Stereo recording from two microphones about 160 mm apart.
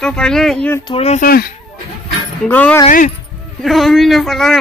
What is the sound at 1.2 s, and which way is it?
Speech, 70° left (ahead or behind).